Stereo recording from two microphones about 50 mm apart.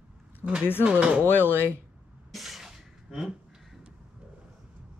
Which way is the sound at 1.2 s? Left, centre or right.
Left.